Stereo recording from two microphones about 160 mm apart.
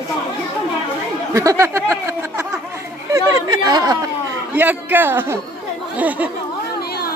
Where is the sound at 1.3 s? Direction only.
20° right (ahead or behind).